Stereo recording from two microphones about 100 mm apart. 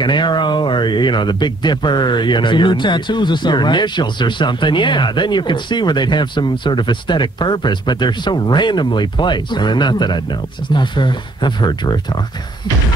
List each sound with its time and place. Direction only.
0.0 s speech: 50° left (ahead or behind)